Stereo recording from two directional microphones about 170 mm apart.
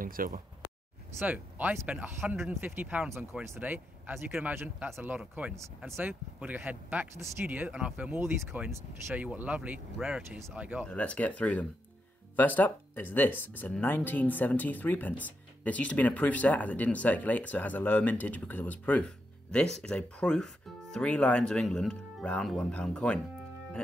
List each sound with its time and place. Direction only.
0.0 s speech: 55° right (ahead or behind)
1.2 s speech: 10° right (ahead or behind)
10.9 s speech: 10° left (ahead or behind)